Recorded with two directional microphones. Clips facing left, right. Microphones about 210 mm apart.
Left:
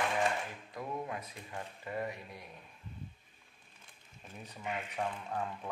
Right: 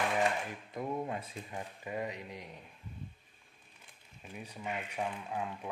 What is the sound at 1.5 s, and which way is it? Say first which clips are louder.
Speech: even; 15° right (ahead or behind).